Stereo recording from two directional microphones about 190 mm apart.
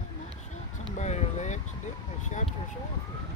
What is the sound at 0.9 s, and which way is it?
Boat, 35° left (ahead or behind).